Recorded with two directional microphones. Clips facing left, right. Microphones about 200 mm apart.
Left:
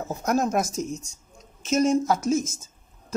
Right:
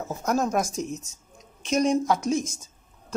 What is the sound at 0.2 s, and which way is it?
A woman's voice, 10° left (ahead or behind).